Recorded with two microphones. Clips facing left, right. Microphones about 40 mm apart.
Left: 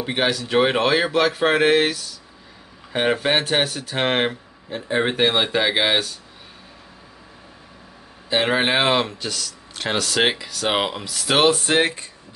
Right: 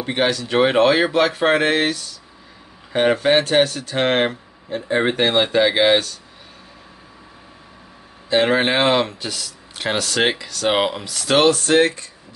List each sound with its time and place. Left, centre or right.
0.0 s speech: centre
8.3 s speech: centre